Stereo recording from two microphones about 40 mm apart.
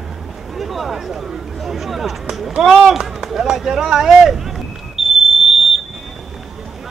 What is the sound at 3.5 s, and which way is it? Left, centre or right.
Speech, centre.